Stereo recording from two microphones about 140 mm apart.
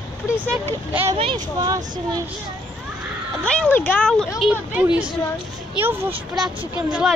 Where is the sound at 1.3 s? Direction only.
25° right (ahead or behind).